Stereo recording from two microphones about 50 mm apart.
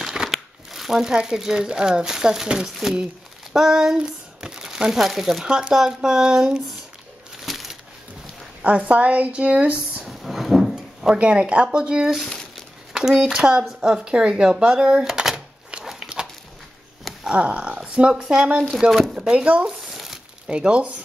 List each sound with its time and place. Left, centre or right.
0.3 s crumpling: centre
1.1 s speech: centre
5.4 s speech: centre
7.3 s a sound: centre
8.6 s a woman's voice: right
10.0 s a sound: centre
11.1 s a woman's voice: right
14.7 s door: centre
17.0 s a sound: centre
17.4 s a woman's voice: right
18.6 s speech: centre
19.1 s speech: right
19.9 s crumpling: centre
20.4 s a woman's voice: centre